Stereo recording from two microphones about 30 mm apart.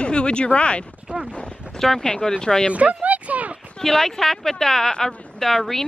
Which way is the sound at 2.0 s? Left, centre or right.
Left.